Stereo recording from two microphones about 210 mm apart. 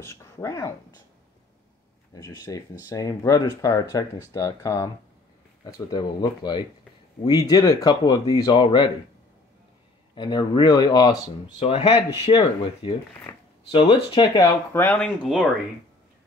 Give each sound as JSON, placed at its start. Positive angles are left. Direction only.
{"t": 0.0, "sound": "speech", "side_deg": 15}
{"t": 2.1, "sound": "speech", "side_deg": 15}
{"t": 10.1, "sound": "speech", "side_deg": 20}
{"t": 13.3, "sound": "shuffling cards", "side_deg": 15}
{"t": 13.7, "sound": "speech", "side_deg": 25}
{"t": 14.7, "sound": "speech", "side_deg": 10}
{"t": 15.0, "sound": "speech", "side_deg": 0}